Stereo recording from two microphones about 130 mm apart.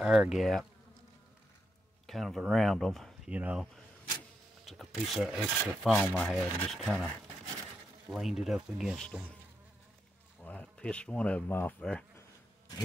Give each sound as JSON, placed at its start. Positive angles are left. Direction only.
{"t": 0.0, "sound": "rub", "side_deg": -5}
{"t": 2.0, "sound": "rub", "side_deg": 0}
{"t": 3.3, "sound": "speech", "side_deg": -10}
{"t": 4.6, "sound": "rub", "side_deg": 0}
{"t": 8.1, "sound": "rub", "side_deg": 0}
{"t": 10.4, "sound": "speech", "side_deg": 10}